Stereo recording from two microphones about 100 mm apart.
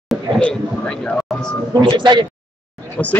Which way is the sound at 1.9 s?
50° right (ahead or behind).